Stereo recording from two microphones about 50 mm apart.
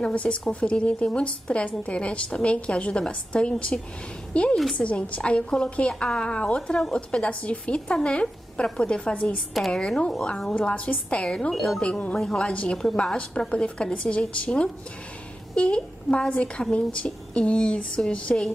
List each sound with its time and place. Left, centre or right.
0.0 s a woman's voice: left
9.7 s a woman's voice: centre
11.5 s speech: centre
12.4 s a woman's voice: left